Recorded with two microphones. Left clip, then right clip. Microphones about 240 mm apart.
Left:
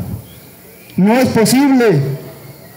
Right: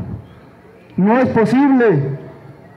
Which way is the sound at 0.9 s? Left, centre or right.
Left.